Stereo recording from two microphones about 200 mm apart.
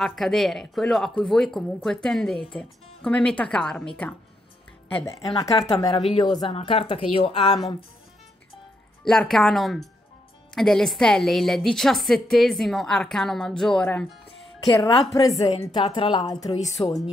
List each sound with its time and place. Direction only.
0.0 s a woman's voice: centre (ahead or behind)
5.0 s a woman's voice: 15° left (ahead or behind)
9.0 s a woman's voice: centre (ahead or behind)
15.4 s a woman's voice: 20° left (ahead or behind)